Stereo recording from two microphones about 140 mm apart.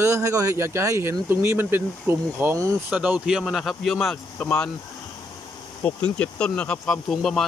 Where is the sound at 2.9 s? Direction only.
10° right (ahead or behind).